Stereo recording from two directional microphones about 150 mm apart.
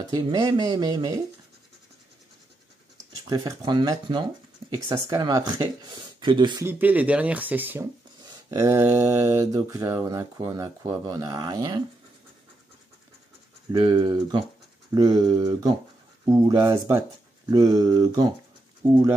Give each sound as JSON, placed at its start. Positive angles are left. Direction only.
{"t": 0.1, "sound": "speech", "side_deg": -25}
{"t": 3.3, "sound": "speech", "side_deg": -30}
{"t": 6.6, "sound": "speech", "side_deg": -15}
{"t": 8.2, "sound": "speech", "side_deg": -25}
{"t": 13.7, "sound": "speech", "side_deg": -30}